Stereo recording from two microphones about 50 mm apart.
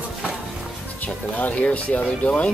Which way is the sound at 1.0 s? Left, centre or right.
Left.